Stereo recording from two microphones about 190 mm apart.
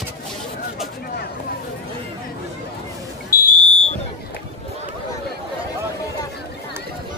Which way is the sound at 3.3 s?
50° left (ahead or behind).